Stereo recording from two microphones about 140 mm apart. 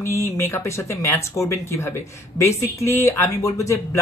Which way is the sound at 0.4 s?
20° left (ahead or behind).